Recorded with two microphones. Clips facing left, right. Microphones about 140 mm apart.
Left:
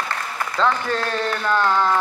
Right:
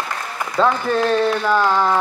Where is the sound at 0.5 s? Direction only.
10° right (ahead or behind).